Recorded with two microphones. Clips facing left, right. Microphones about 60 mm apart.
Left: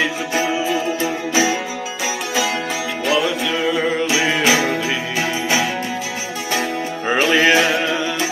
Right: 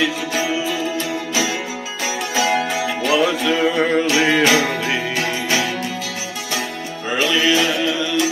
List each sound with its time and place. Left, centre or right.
0.5 s music: left
2.3 s music: centre
7.1 s music: left